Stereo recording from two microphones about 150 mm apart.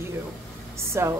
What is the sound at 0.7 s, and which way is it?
Speech, 20° right (ahead or behind).